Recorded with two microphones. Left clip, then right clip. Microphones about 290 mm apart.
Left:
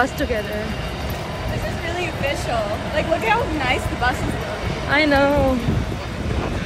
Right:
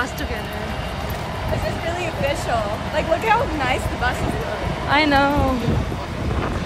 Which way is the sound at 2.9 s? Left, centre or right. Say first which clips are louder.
Right 1 dB; centre.